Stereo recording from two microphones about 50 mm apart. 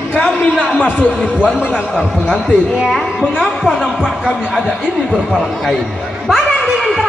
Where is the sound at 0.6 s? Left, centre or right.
Left.